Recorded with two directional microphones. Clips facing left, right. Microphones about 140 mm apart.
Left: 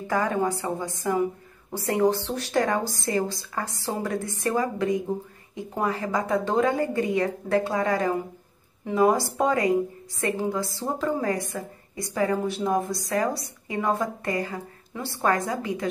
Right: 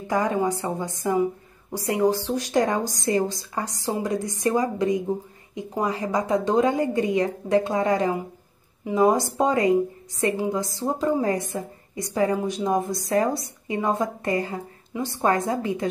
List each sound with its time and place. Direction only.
0.1 s a woman's voice: 20° right (ahead or behind)